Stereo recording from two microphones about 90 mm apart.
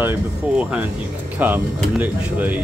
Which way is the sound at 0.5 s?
10° right (ahead or behind).